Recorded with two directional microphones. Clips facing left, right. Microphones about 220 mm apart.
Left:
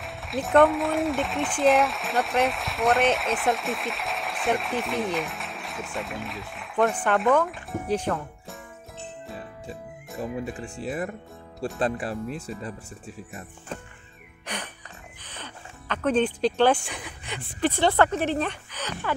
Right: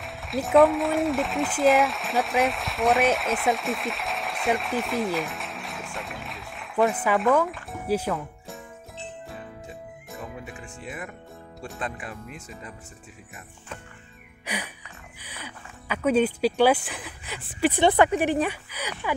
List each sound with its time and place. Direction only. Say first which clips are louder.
0.0 s speech: right 1 dB; centre (ahead or behind)
10.8 s speech: left 8 dB; 35° left (ahead or behind)
14.4 s music: right 2 dB; 10° right (ahead or behind)
15.2 s speech: right 1 dB; 10° right (ahead or behind)